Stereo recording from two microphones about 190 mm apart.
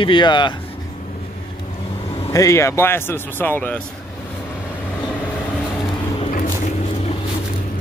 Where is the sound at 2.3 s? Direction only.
15° left (ahead or behind).